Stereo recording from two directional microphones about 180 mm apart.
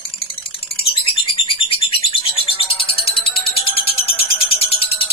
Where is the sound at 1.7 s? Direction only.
30° left (ahead or behind).